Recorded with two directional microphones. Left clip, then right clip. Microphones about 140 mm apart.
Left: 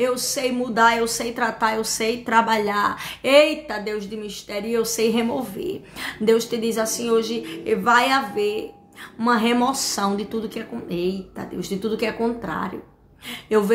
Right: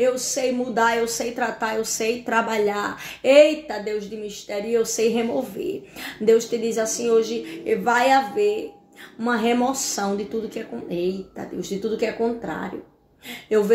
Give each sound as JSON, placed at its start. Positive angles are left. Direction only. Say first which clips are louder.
{"t": 0.0, "sound": "a woman's voice", "louder": "right 1 dB", "side_deg": 25}